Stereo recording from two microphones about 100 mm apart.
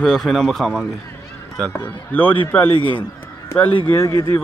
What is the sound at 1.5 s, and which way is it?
Speech, 15° left (ahead or behind).